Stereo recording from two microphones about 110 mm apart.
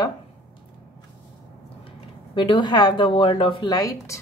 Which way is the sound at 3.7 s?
30° left (ahead or behind).